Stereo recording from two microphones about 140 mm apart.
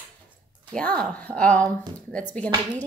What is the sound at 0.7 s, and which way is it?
Speech, 5° left (ahead or behind).